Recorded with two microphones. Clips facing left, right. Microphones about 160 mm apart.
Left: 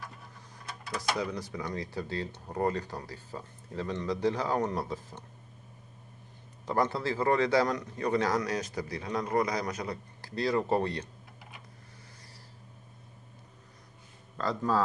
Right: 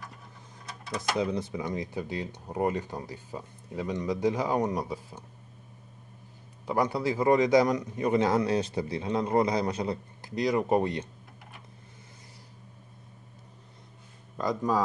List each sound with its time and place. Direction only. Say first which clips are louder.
0.9 s speech: right 4 dB; 25° right (ahead or behind)
6.6 s a man's voice: right 2 dB; 10° right (ahead or behind)
14.3 s speech: right 2 dB; 15° right (ahead or behind)